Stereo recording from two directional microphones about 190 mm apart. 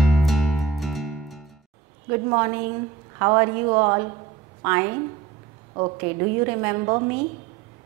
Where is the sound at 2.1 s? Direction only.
15° right (ahead or behind).